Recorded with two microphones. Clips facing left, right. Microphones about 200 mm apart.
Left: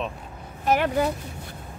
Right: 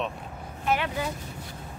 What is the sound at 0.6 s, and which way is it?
Speech, 45° left (ahead or behind).